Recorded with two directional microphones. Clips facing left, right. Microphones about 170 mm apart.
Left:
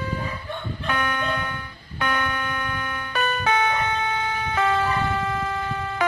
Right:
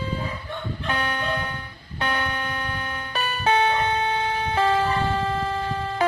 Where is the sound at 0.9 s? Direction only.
35° right (ahead or behind).